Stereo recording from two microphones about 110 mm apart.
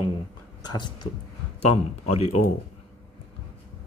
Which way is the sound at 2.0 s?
65° left (ahead or behind).